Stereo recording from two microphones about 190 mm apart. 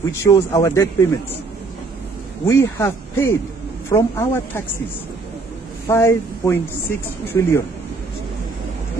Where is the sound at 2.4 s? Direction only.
15° left (ahead or behind).